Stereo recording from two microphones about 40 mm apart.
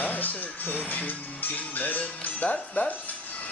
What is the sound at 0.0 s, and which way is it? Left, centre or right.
Music, left.